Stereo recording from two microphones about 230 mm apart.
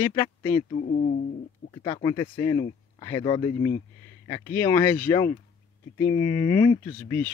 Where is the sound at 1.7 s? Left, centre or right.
Left.